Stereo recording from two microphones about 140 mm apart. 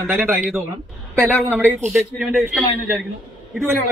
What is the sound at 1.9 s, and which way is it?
Speech, centre (ahead or behind).